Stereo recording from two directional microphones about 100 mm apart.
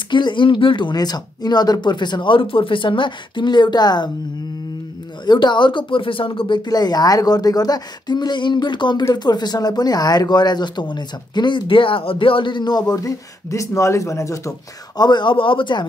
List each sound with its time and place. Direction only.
0.1 s speech: 50° left (ahead or behind)
5.2 s speech: 50° left (ahead or behind); by 14.5 s 30° left (ahead or behind)
15.0 s speech: 50° left (ahead or behind)